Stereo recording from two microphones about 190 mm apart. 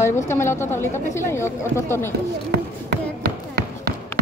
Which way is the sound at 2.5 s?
55° right (ahead or behind).